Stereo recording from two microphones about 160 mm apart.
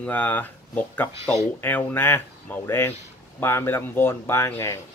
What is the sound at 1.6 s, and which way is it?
A man's voice, 15° left (ahead or behind).